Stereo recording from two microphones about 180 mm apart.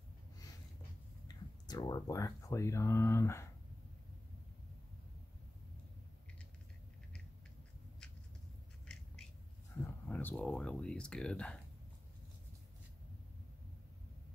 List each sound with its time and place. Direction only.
1.2 s speech: 20° left (ahead or behind)
9.8 s speech: 10° left (ahead or behind)